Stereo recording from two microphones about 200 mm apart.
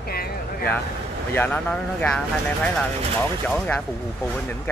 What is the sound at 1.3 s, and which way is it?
Speech, 10° left (ahead or behind).